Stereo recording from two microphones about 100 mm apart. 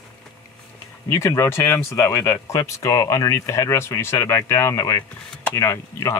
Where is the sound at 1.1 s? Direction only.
30° left (ahead or behind).